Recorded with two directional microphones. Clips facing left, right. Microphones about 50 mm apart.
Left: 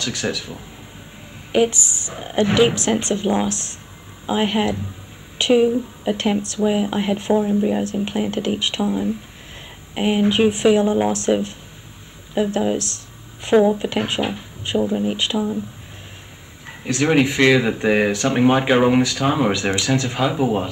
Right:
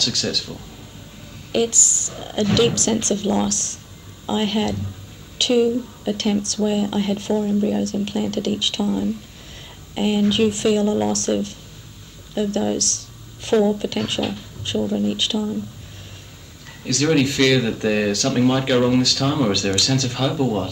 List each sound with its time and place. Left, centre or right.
0.0 s speech: left
16.6 s speech: left